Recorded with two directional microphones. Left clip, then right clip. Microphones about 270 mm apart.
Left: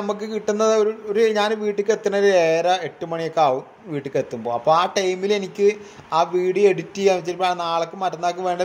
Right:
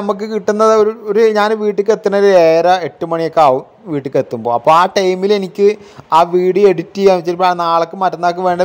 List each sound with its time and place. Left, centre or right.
0.0 s a man's voice: right